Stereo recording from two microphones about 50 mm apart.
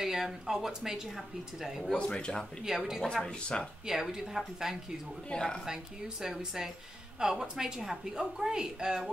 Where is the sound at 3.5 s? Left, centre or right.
Centre.